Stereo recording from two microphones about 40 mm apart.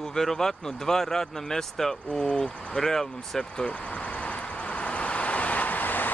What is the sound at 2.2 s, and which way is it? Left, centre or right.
Speech, left.